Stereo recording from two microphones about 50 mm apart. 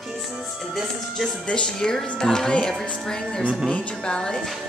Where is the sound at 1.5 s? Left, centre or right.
Centre.